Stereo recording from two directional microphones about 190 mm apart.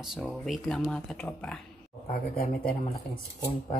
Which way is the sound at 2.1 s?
50° left (ahead or behind).